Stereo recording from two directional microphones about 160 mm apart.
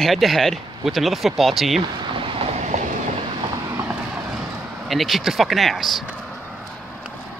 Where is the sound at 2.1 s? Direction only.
30° right (ahead or behind).